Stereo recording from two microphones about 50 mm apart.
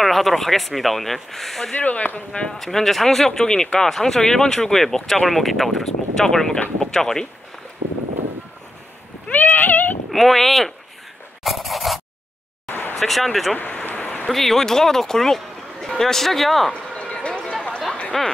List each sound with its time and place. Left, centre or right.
0.0 s speech: centre
1.7 s speech: left
2.5 s speech: centre
9.3 s speech: left
10.1 s speech: centre
11.4 s a sound: centre
12.6 s vehicle: left
12.9 s speech: centre
13.6 s vehicle: left
14.2 s speech: centre
16.7 s a sound: left
18.1 s speech: centre